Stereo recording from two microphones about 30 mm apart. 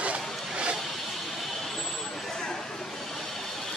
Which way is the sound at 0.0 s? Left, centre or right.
Right.